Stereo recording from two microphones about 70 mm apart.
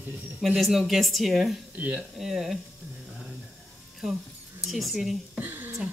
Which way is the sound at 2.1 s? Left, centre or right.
Centre.